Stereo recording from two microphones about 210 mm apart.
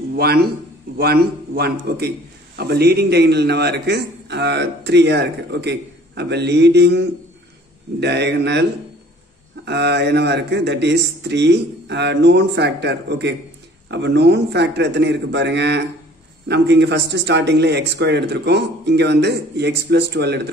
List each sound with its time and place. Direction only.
0.1 s a man's voice: 50° right (ahead or behind)
9.7 s a man's voice: 55° right (ahead or behind)